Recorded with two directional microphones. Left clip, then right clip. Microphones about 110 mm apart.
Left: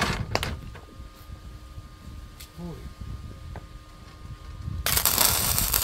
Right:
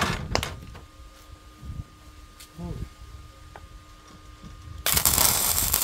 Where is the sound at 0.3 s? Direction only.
25° right (ahead or behind).